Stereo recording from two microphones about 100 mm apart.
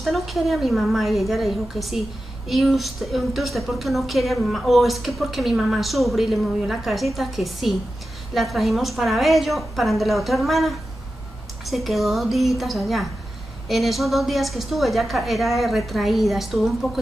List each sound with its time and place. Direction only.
0.0 s a woman's voice: centre (ahead or behind)